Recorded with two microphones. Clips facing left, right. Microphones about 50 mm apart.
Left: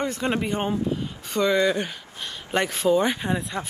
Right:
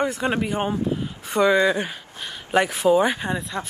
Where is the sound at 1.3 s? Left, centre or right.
Centre.